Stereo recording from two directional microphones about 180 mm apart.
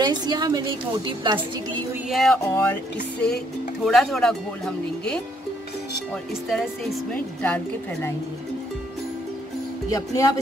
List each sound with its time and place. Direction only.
0.0 s a woman's voice: 25° right (ahead or behind)
2.0 s speech: centre (ahead or behind)
2.4 s music: 15° left (ahead or behind)
3.8 s speech: centre (ahead or behind)
6.5 s speech: centre (ahead or behind)
7.4 s music: 5° left (ahead or behind)
9.8 s speech: 20° left (ahead or behind)